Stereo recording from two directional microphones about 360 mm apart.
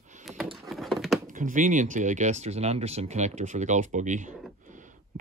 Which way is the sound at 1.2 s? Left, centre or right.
Right.